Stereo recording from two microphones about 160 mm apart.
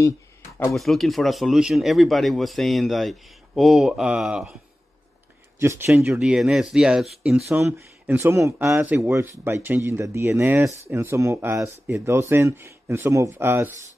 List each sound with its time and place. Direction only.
0.7 s speech: centre (ahead or behind)
5.6 s speech: 15° right (ahead or behind)
7.4 s speech: 15° right (ahead or behind)